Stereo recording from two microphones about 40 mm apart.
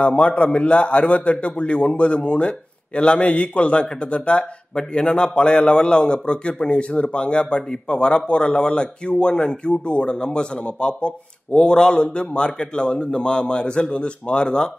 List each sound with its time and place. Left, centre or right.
0.0 s a man's voice: left